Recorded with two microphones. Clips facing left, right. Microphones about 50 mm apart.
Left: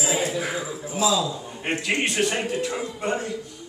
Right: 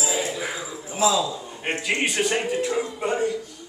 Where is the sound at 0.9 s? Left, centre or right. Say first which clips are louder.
Right 1 dB; right.